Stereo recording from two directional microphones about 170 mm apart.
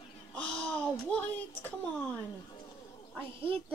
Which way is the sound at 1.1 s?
10° left (ahead or behind).